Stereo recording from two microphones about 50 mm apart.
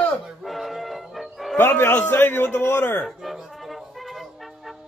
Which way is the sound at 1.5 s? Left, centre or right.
Left.